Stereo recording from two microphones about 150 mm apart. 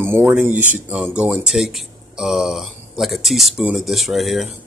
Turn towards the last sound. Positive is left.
turn(degrees=0)  # may be behind; listen again after turning